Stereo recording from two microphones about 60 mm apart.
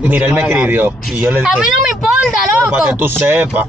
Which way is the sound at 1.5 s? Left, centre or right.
Centre.